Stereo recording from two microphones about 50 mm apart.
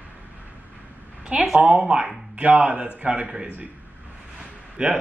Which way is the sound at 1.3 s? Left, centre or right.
Centre.